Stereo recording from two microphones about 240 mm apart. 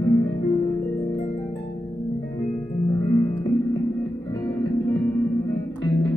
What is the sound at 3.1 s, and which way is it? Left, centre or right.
Music, centre.